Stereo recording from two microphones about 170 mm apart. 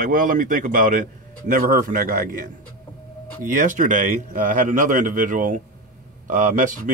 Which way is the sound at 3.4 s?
50° right (ahead or behind).